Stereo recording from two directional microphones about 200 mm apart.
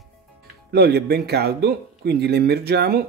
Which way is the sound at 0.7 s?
55° right (ahead or behind).